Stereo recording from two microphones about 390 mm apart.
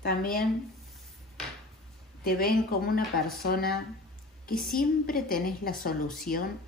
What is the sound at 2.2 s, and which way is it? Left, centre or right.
Speech, left.